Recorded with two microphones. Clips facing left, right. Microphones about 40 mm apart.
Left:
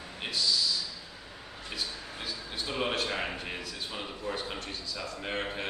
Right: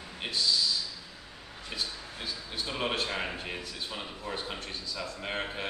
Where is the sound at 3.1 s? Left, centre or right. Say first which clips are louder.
Left 1 dB; centre.